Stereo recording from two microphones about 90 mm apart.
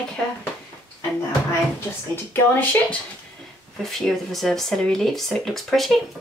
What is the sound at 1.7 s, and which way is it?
Speech, 25° left (ahead or behind).